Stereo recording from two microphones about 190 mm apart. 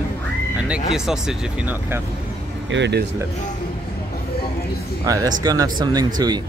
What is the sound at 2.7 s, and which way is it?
Speech, 65° right (ahead or behind).